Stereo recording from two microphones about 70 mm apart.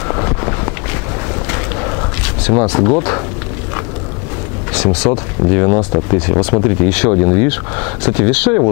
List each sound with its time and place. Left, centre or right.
0.1 s walk: left
1.5 s a sound: left
2.4 s speech: centre
4.7 s speech: centre